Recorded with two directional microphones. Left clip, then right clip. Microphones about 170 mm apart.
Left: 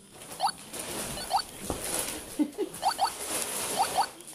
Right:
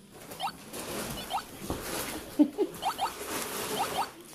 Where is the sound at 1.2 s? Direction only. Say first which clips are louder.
Left 7 dB; 20° left (ahead or behind).